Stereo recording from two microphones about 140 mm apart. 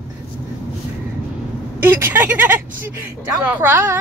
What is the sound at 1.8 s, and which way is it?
Speech, 15° right (ahead or behind).